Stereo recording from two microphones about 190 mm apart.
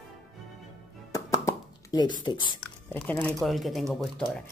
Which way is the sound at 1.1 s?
20° left (ahead or behind).